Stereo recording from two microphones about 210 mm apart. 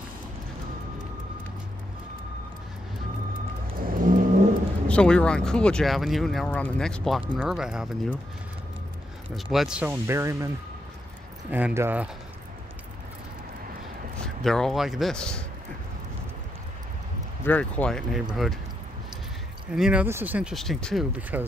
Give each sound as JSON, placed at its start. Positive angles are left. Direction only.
{"t": 3.8, "sound": "vehicle", "side_deg": -40}
{"t": 4.8, "sound": "speech", "side_deg": 5}
{"t": 9.3, "sound": "speech", "side_deg": 0}
{"t": 11.5, "sound": "speech", "side_deg": -10}
{"t": 14.2, "sound": "speech", "side_deg": 0}
{"t": 17.5, "sound": "speech", "side_deg": 5}
{"t": 19.7, "sound": "speech", "side_deg": -5}